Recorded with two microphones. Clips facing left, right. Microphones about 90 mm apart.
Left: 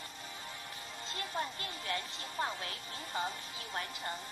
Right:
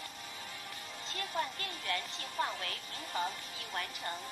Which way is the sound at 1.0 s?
25° left (ahead or behind).